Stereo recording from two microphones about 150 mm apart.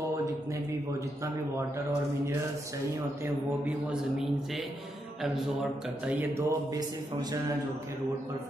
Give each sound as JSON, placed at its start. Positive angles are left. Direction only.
{"t": 3.6, "sound": "a man's voice", "side_deg": -5}
{"t": 6.3, "sound": "a man's voice", "side_deg": -25}